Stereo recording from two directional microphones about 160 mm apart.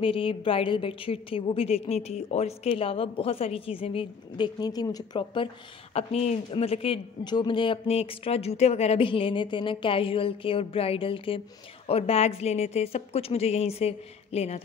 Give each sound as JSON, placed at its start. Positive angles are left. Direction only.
{"t": 0.0, "sound": "a woman's voice", "side_deg": 35}
{"t": 5.9, "sound": "speech", "side_deg": 40}